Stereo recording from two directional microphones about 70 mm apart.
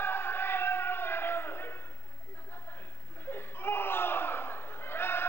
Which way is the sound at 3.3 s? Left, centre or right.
Left.